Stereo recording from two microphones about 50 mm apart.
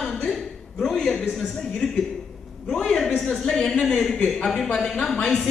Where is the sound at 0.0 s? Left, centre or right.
Centre.